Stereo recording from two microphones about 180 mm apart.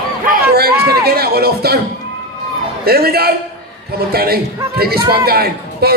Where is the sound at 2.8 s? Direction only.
60° right (ahead or behind).